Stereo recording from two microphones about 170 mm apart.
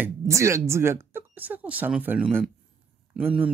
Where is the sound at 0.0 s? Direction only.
15° right (ahead or behind).